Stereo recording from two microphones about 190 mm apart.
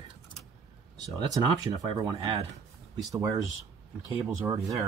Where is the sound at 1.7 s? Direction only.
20° right (ahead or behind).